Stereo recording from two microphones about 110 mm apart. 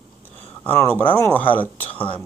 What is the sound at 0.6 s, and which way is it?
Speech, 15° left (ahead or behind).